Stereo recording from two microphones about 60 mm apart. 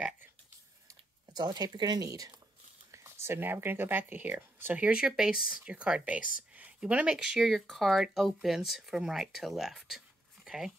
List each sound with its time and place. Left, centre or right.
1.5 s speech: right
2.9 s a sound: right
3.6 s speech: right
4.7 s speech: centre
7.2 s speech: centre